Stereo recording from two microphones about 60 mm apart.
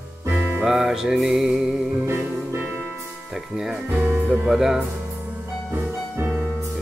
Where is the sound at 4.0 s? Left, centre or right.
Right.